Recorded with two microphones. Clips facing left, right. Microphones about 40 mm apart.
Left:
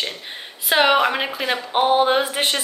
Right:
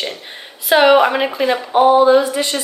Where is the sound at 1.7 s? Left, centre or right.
Left.